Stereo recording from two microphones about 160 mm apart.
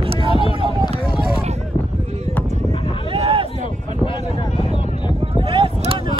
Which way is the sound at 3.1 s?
35° right (ahead or behind).